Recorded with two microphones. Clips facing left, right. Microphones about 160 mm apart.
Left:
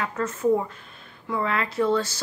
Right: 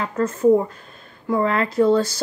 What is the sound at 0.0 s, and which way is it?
Speech, 30° right (ahead or behind).